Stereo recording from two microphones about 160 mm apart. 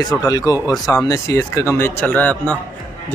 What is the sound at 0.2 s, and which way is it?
Speech, 20° left (ahead or behind).